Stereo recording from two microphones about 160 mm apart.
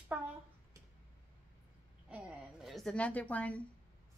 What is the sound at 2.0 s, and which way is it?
A woman's voice, 5° right (ahead or behind).